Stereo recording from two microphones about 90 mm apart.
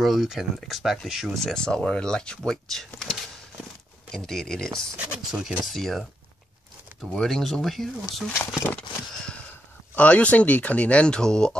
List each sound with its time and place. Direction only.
0.0 s speech: centre (ahead or behind)
4.9 s speech: 10° right (ahead or behind)
5.7 s speech: centre (ahead or behind)
8.3 s speech: 30° left (ahead or behind)
9.9 s speech: 15° left (ahead or behind)